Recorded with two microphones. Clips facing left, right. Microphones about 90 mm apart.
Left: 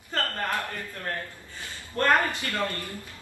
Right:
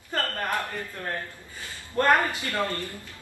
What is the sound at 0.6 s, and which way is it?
Speech, 20° right (ahead or behind).